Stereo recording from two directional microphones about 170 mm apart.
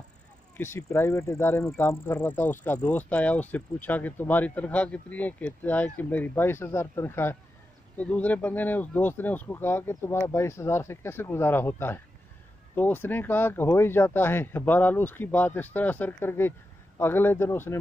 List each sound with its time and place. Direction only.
0.6 s speech: 15° left (ahead or behind)